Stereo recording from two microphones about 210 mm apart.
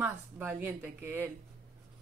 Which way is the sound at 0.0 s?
10° right (ahead or behind).